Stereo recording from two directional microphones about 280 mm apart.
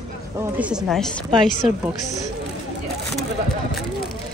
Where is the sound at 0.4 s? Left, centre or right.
Centre.